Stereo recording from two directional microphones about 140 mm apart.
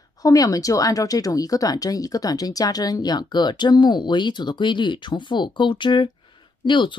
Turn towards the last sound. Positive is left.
turn(degrees=35)  # may be behind; listen again after turning